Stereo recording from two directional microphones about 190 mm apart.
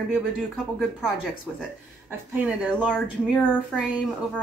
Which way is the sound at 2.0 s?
10° right (ahead or behind).